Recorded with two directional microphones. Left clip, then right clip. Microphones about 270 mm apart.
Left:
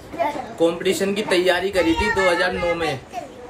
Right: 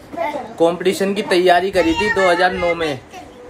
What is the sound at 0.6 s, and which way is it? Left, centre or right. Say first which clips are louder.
Speech: right 4 dB; centre.